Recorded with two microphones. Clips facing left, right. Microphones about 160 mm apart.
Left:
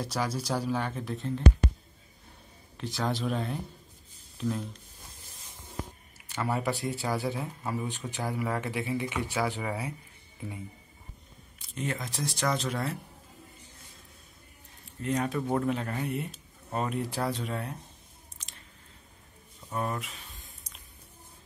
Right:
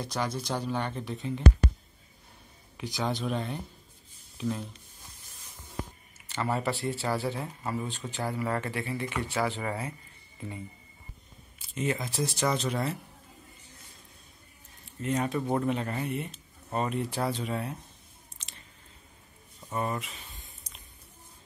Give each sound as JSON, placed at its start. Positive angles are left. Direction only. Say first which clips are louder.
{"t": 0.0, "sound": "speech", "louder": "left 1 dB", "side_deg": 5}
{"t": 2.8, "sound": "speech", "louder": "even", "side_deg": 0}
{"t": 6.3, "sound": "speech", "louder": "even", "side_deg": 0}
{"t": 6.6, "sound": "speech", "louder": "even", "side_deg": 15}
{"t": 7.3, "sound": "speech", "louder": "even", "side_deg": 5}
{"t": 11.7, "sound": "speech", "louder": "right 4 dB", "side_deg": -5}
{"t": 15.0, "sound": "speech", "louder": "even", "side_deg": 0}
{"t": 19.7, "sound": "a sound", "louder": "right 1 dB", "side_deg": -5}